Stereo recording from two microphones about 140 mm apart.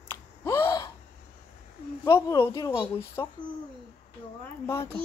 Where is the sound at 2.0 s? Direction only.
20° left (ahead or behind).